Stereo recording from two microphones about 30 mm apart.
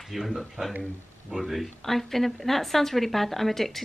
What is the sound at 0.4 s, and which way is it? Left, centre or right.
Speech, centre.